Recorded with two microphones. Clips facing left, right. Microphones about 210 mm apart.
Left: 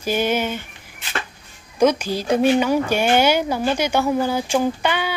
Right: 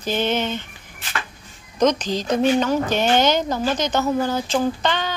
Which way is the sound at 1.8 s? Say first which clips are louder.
Left 1 dB; 10° left (ahead or behind).